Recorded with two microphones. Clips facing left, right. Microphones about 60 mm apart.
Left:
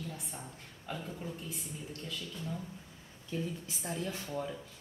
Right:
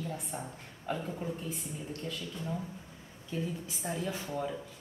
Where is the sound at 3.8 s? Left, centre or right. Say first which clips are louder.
Right 2 dB; centre.